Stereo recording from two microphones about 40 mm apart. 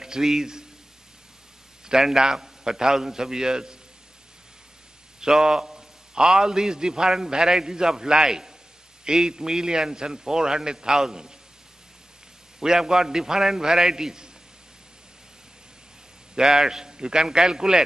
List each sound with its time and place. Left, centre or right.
0.0 s speech: centre
1.9 s a man's voice: centre
5.2 s a man's voice: centre
12.5 s a man's voice: centre
16.3 s a man's voice: centre